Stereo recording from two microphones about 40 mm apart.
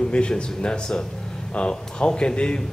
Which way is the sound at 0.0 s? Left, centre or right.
Left.